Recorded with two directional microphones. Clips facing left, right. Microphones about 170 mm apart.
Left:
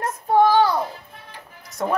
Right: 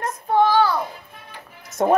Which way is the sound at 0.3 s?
15° left (ahead or behind).